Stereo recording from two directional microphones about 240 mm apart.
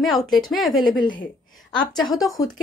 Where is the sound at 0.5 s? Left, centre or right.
Centre.